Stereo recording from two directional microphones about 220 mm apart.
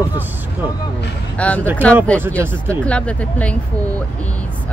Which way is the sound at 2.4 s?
10° right (ahead or behind).